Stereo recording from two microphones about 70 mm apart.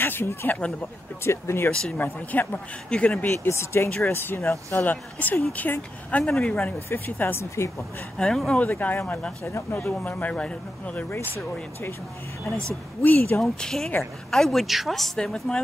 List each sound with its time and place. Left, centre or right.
0.0 s speech: left
1.7 s speech: centre
2.0 s speech: left
3.4 s speech: left; by 6.7 s centre
6.9 s speech: left
8.2 s speech: centre
8.5 s speech: left
9.5 s speech: left
10.0 s speech: left
13.0 s speech: left
13.4 s speech: centre